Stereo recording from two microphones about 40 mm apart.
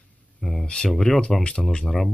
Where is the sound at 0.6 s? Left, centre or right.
Left.